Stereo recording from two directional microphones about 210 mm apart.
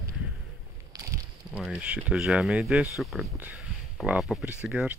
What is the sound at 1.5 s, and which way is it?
Speech, 5° right (ahead or behind).